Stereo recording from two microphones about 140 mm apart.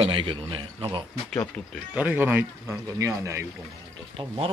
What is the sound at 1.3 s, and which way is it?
Speech, 10° left (ahead or behind).